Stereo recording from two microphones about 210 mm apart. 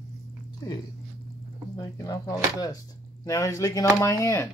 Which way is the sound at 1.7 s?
15° left (ahead or behind).